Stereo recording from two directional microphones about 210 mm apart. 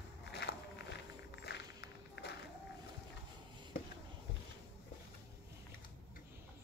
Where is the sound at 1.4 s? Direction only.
55° left (ahead or behind).